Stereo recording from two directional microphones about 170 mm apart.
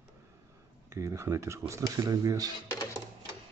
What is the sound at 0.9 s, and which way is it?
Speech, 15° right (ahead or behind).